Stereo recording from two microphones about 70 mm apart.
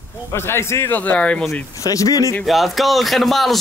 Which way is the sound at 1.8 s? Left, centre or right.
Left.